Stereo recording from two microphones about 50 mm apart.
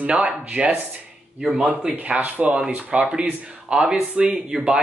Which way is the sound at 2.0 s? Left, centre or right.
Right.